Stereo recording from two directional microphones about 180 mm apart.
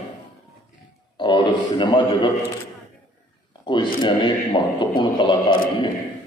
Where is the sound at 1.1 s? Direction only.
25° left (ahead or behind).